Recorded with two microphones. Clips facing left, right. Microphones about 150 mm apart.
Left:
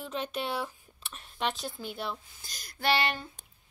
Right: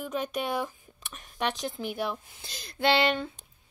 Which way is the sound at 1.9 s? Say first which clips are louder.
Right 5 dB; 60° right (ahead or behind).